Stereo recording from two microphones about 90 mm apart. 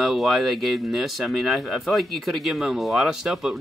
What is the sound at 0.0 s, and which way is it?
Speech, centre (ahead or behind).